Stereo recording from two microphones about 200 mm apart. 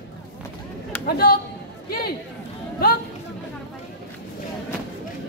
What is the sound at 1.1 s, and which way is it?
Speech, 50° left (ahead or behind).